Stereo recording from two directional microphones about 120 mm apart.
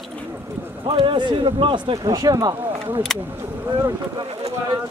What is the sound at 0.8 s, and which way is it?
Speech, 45° right (ahead or behind).